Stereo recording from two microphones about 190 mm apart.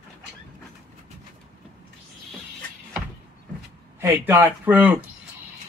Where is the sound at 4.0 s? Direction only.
10° right (ahead or behind).